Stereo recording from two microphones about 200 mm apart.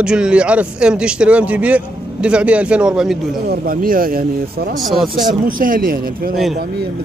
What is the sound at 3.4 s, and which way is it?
Speech, 45° right (ahead or behind).